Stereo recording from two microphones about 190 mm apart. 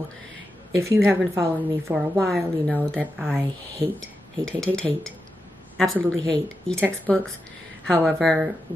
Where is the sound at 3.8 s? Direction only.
15° right (ahead or behind).